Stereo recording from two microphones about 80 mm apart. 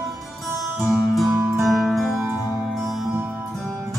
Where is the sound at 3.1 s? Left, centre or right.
Right.